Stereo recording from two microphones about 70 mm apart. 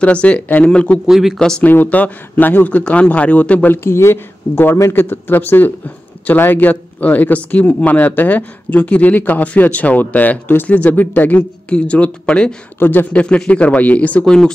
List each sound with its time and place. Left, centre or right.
0.0 s speech: centre
1.0 s speech: centre
1.6 s speech: left
12.7 s speech: left
14.2 s speech: centre